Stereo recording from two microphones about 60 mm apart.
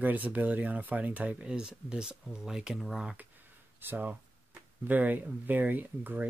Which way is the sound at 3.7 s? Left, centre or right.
Right.